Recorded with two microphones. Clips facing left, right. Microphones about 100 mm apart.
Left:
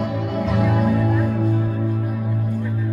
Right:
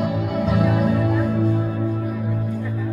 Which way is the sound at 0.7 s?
45° left (ahead or behind).